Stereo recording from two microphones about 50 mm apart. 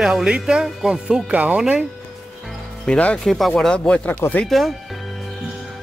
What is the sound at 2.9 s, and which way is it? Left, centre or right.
Speech, left.